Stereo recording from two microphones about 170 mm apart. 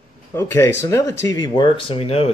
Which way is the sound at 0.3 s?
15° left (ahead or behind).